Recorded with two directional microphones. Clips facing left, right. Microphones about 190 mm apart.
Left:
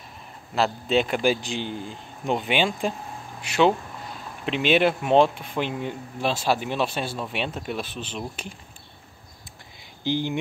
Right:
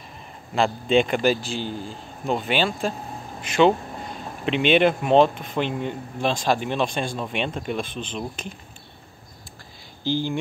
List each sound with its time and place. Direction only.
0.6 s speech: 5° left (ahead or behind)
4.5 s speech: 5° left (ahead or behind)
10.0 s speech: 20° left (ahead or behind)